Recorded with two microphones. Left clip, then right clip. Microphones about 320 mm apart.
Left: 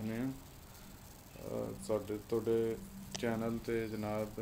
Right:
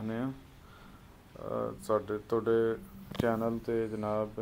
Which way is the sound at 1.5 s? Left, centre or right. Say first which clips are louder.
Right 6 dB; centre.